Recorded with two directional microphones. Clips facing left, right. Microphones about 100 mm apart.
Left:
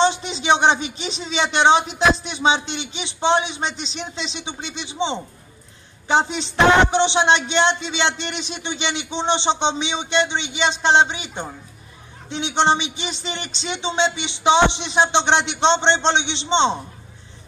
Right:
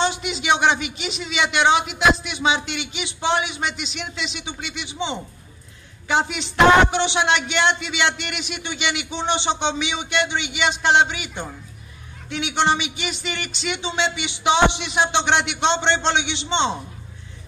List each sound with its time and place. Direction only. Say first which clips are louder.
0.0 s a man's voice: left 4 dB; 30° left (ahead or behind)